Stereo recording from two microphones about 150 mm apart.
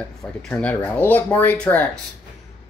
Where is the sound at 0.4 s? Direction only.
10° left (ahead or behind).